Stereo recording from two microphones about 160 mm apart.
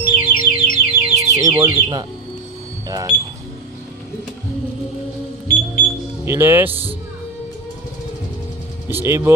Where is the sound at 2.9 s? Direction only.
25° right (ahead or behind).